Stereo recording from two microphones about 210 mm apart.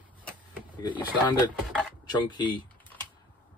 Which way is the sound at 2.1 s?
20° left (ahead or behind).